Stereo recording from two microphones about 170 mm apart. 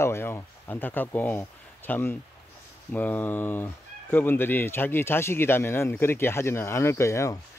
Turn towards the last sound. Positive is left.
turn(degrees=15)  # may be behind; listen again after turning